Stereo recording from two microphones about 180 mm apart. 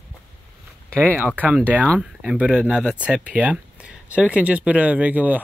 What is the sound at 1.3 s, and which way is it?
Speech, 10° right (ahead or behind).